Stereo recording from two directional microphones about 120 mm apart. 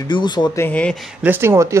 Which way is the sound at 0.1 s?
35° left (ahead or behind).